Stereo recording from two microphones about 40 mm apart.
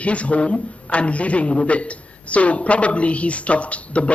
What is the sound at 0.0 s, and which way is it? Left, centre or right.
A man's voice, left.